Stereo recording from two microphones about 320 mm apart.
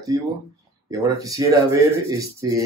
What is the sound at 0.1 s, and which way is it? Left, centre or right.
Speech, centre.